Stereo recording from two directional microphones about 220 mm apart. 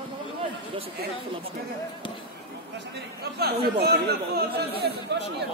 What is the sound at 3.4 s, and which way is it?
Speech, 45° right (ahead or behind).